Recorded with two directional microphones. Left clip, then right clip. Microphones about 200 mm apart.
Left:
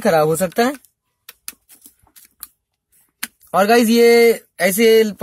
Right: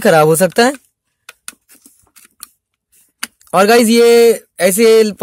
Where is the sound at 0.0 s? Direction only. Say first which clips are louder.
Right 6 dB; 50° right (ahead or behind).